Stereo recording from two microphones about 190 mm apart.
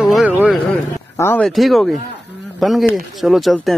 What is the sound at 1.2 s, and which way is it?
Speech, centre (ahead or behind).